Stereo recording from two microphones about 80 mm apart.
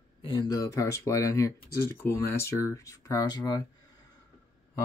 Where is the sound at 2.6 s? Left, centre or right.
Left.